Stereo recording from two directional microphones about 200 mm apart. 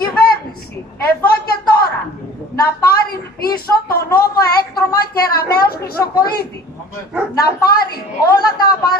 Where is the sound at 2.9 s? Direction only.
50° left (ahead or behind).